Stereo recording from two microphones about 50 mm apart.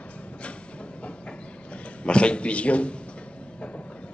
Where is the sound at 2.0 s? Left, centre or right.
Left.